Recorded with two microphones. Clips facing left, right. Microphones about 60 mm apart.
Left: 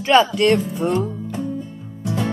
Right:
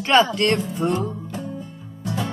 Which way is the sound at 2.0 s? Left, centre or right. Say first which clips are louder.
Left 4 dB; centre.